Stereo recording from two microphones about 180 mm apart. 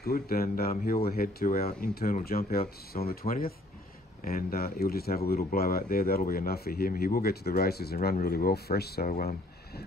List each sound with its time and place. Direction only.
0.0 s speech: 55° left (ahead or behind)